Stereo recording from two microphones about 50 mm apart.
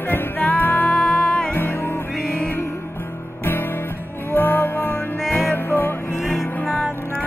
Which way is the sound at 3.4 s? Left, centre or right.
Left.